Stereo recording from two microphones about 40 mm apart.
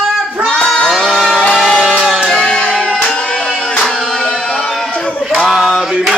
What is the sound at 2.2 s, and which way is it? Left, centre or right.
Music, centre.